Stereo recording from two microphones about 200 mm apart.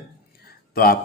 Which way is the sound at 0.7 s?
45° left (ahead or behind).